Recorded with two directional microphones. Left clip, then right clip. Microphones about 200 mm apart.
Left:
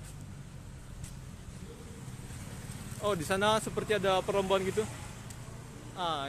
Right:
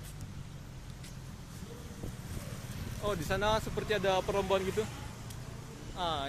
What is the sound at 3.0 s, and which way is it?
Speech, 40° left (ahead or behind).